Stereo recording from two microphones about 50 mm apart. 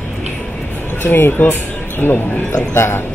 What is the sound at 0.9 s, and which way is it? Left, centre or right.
Speech, left.